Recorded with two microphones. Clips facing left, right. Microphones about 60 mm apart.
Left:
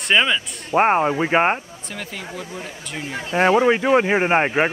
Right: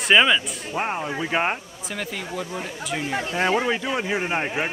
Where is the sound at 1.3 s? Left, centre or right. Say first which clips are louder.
Left 4 dB; left.